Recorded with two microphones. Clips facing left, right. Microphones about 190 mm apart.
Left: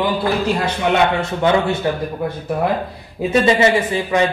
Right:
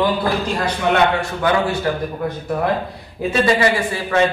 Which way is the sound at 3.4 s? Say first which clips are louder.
Left 1 dB; 20° left (ahead or behind).